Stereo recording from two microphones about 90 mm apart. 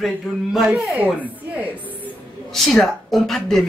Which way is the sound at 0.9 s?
15° right (ahead or behind).